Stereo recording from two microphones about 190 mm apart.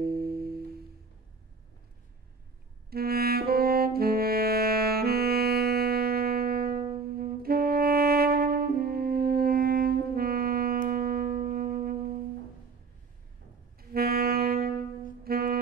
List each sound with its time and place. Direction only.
0.0 s music: 55° right (ahead or behind)
2.9 s saxophone: 55° right (ahead or behind)
10.9 s music: 50° right (ahead or behind)
13.7 s saxophone: 55° right (ahead or behind)
15.2 s music: 55° right (ahead or behind)